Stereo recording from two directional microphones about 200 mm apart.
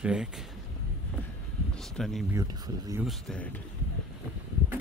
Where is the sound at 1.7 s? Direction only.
5° left (ahead or behind).